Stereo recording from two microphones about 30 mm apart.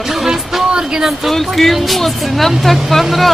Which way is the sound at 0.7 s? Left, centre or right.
Right.